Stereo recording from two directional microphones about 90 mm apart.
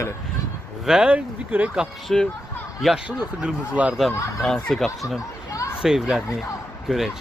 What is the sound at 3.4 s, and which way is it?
Speech, 15° right (ahead or behind).